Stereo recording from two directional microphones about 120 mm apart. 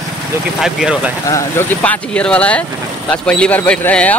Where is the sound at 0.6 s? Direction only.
5° right (ahead or behind).